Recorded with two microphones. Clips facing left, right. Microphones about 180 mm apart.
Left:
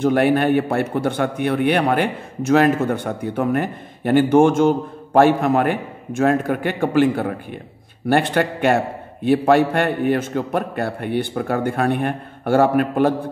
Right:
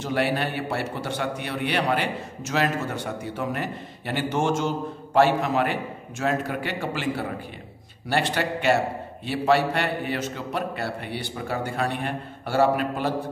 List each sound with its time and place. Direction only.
0.0 s a man's voice: 50° left (ahead or behind)